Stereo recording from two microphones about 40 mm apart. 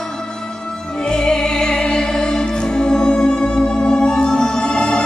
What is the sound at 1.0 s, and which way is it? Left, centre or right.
Music, centre.